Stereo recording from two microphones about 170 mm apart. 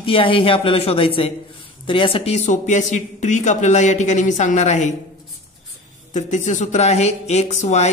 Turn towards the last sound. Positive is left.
turn(degrees=40)  # may be behind; listen again after turning